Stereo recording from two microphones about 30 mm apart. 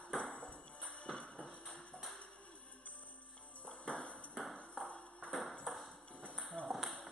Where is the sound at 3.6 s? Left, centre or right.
Left.